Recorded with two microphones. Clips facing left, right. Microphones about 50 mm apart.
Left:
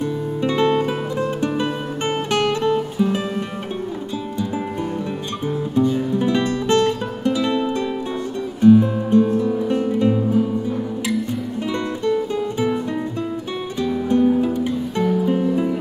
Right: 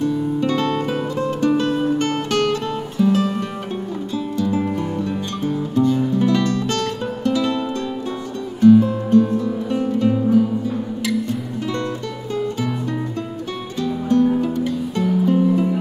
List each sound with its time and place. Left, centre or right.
0.0 s music: centre
5.8 s music: centre
11.7 s music: centre
13.8 s music: centre